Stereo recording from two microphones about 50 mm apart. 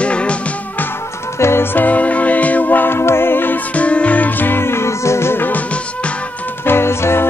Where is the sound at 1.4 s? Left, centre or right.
Left.